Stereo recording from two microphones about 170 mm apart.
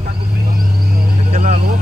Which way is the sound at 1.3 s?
45° right (ahead or behind).